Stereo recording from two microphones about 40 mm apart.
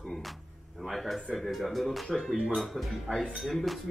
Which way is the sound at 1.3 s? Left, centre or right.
Centre.